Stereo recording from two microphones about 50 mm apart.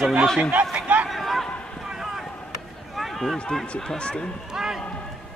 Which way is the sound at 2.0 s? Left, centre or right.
Centre.